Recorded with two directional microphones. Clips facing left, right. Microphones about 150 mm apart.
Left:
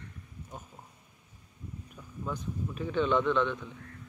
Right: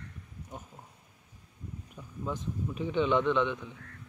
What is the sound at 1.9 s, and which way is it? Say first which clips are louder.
A man's voice: right 1 dB; 20° right (ahead or behind).